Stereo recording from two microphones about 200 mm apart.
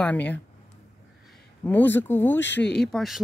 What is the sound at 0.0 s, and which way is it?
Speech, 5° left (ahead or behind).